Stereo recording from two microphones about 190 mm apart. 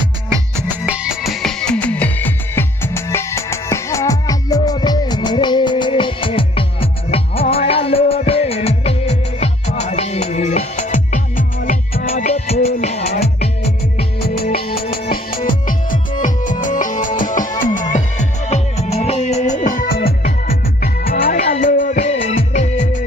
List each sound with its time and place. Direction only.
0.6 s music: 5° right (ahead or behind); by 14.0 s 35° left (ahead or behind)
14.2 s music: 55° left (ahead or behind); by 23.0 s 40° left (ahead or behind)